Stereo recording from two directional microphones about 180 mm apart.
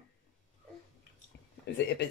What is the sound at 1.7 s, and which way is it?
Speech, 65° left (ahead or behind).